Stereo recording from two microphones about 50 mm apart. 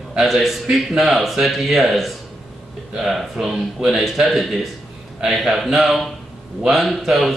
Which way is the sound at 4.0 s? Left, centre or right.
Centre.